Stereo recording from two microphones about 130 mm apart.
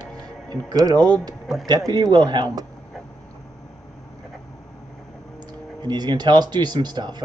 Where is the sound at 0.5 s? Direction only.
30° right (ahead or behind).